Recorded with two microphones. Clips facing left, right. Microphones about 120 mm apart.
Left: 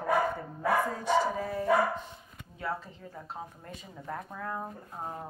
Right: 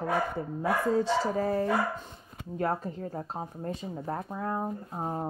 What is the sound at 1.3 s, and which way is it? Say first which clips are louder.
Speech: right 1 dB; 45° right (ahead or behind).